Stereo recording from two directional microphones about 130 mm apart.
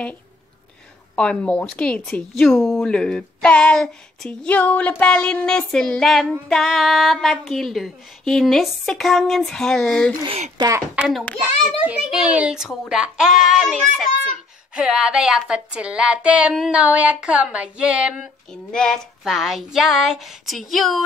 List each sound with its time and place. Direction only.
1.1 s speech: 10° left (ahead or behind)
6.5 s female singing: centre (ahead or behind)
10.2 s speech: 55° right (ahead or behind)
11.0 s female singing: centre (ahead or behind)
11.3 s female singing: 15° right (ahead or behind); by 14.0 s centre (ahead or behind)
14.7 s speech: 5° right (ahead or behind)
18.5 s female singing: 5° left (ahead or behind)